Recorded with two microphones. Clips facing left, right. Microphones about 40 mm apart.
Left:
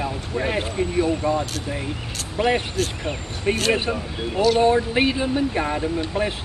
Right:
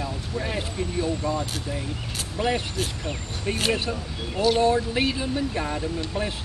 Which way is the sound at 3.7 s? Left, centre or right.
Left.